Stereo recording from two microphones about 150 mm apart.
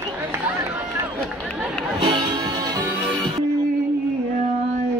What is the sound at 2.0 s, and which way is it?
Music, 40° right (ahead or behind).